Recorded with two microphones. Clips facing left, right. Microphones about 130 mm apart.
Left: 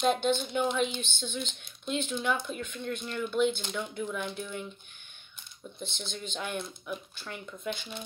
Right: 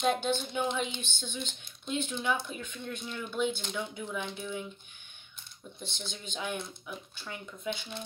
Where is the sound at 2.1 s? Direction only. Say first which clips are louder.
Left 2 dB; centre (ahead or behind).